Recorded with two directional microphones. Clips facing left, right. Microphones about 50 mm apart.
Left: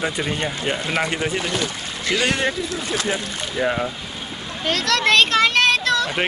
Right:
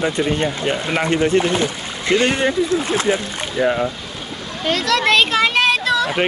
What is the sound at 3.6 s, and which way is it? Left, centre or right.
Speech, centre.